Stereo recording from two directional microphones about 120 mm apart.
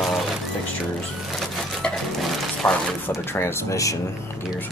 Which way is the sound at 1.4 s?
Centre (ahead or behind).